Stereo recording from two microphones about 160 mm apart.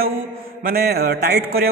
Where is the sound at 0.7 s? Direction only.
80° right.